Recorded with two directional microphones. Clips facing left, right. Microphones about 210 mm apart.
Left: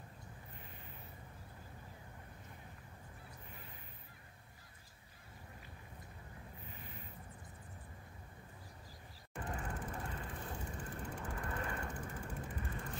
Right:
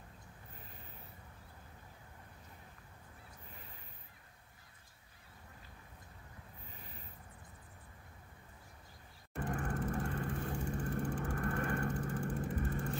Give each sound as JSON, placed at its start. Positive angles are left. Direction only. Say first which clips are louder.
{"t": 9.4, "sound": "vehicle", "louder": "right 6 dB", "side_deg": -50}